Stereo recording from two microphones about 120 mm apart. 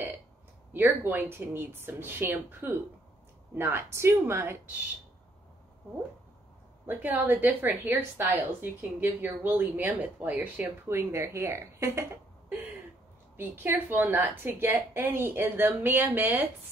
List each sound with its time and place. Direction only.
0.7 s a woman's voice: 20° right (ahead or behind)
6.9 s a woman's voice: 15° right (ahead or behind)